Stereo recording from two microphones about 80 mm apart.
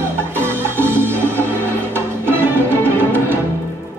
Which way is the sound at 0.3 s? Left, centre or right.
Right.